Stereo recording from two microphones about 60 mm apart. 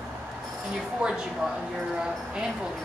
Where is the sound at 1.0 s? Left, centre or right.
Centre.